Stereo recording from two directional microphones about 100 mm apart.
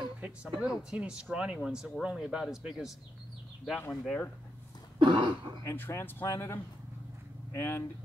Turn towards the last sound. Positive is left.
turn(degrees=25)  # may be behind; listen again after turning